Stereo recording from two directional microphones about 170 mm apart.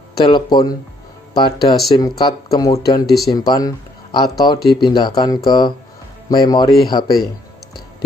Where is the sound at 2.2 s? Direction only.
25° left (ahead or behind).